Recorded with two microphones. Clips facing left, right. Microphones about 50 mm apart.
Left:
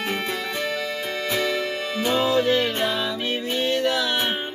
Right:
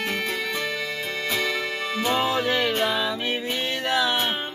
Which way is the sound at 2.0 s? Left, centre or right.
Right.